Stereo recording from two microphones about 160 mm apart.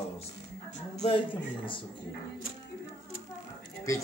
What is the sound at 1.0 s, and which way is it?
Speech, 35° left (ahead or behind).